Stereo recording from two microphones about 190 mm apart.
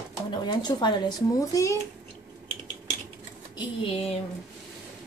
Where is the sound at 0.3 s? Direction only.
20° left (ahead or behind).